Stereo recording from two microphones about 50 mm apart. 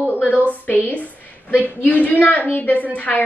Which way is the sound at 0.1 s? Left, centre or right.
Left.